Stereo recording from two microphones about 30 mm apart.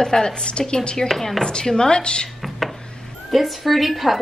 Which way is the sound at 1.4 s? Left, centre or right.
Left.